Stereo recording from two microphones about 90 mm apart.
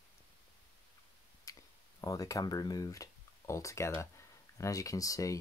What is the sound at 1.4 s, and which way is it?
Speech, 40° left (ahead or behind).